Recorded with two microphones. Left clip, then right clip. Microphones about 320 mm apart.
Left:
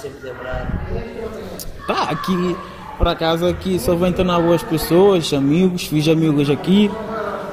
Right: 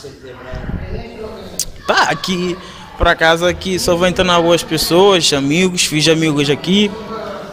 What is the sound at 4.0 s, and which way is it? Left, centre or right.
Speech, right.